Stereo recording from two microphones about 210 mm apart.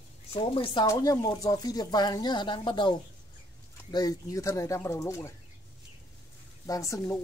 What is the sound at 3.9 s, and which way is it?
Speech, 15° left (ahead or behind).